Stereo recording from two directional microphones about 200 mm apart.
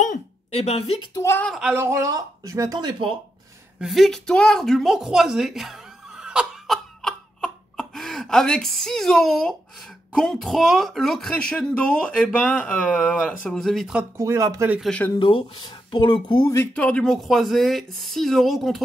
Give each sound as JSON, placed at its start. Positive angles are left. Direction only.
{"t": 0.0, "sound": "speech", "side_deg": 35}
{"t": 1.1, "sound": "speech", "side_deg": 10}
{"t": 1.5, "sound": "speech", "side_deg": -5}
{"t": 3.8, "sound": "a sound", "side_deg": 0}
{"t": 10.1, "sound": "speech", "side_deg": 5}
{"t": 14.1, "sound": "speech", "side_deg": -15}
{"t": 14.8, "sound": "speech", "side_deg": 5}
{"t": 15.1, "sound": "speech", "side_deg": 25}
{"t": 16.7, "sound": "speech", "side_deg": 5}